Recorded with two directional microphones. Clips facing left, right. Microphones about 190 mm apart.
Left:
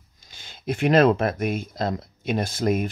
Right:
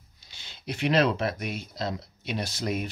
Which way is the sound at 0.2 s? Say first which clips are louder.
Left 6 dB; 50° left (ahead or behind).